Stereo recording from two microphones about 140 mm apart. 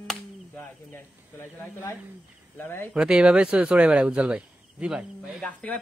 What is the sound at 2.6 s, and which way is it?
Speech, 15° left (ahead or behind).